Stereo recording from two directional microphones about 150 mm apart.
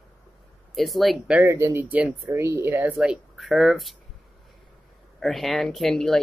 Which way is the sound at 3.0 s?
5° right (ahead or behind).